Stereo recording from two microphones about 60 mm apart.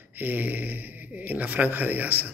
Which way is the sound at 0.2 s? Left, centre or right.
Right.